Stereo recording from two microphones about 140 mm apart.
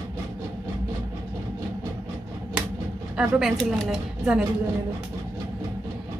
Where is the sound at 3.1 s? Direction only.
5° right (ahead or behind).